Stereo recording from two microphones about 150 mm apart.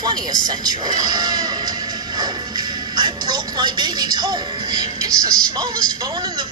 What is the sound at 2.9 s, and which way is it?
A woman's voice, 30° right (ahead or behind).